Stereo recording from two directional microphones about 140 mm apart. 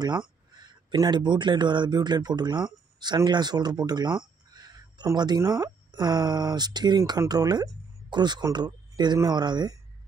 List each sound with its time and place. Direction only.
0.6 s speech: 30° right (ahead or behind)